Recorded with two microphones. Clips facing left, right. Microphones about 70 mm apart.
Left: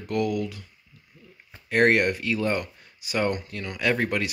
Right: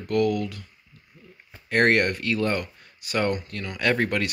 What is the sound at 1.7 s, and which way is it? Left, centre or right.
Speech, centre.